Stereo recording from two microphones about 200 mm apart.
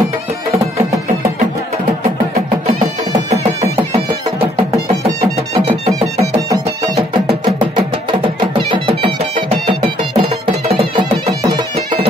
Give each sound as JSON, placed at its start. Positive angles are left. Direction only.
{"t": 7.5, "sound": "music", "side_deg": -25}
{"t": 11.4, "sound": "bagpipes", "side_deg": -25}